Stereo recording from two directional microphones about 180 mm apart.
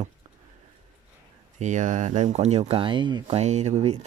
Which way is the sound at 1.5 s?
40° right (ahead or behind).